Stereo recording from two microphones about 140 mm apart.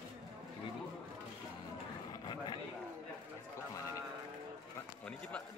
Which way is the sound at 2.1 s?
30° left (ahead or behind).